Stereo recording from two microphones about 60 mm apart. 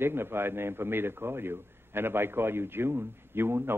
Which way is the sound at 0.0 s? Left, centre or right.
Right.